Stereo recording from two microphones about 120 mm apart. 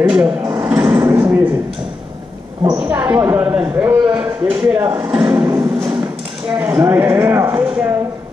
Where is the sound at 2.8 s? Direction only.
10° right (ahead or behind).